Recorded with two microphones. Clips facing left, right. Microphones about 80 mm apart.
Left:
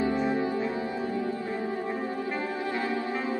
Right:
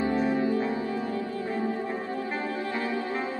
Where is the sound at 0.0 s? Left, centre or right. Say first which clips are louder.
Right 1 dB; left.